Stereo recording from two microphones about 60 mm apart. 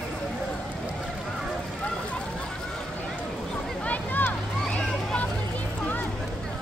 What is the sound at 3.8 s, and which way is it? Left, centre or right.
Boat, left.